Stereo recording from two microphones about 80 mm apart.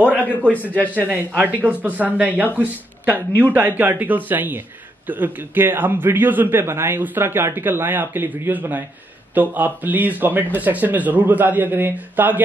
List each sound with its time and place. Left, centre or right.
0.5 s a man's voice: centre
1.1 s a man's voice: right